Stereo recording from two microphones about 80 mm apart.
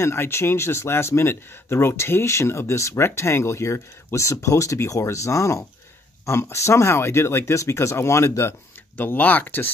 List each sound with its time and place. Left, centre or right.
0.0 s speech: left